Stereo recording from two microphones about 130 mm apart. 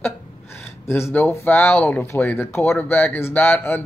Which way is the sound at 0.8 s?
20° left (ahead or behind).